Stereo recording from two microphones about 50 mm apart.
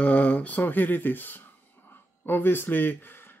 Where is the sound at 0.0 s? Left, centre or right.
Left.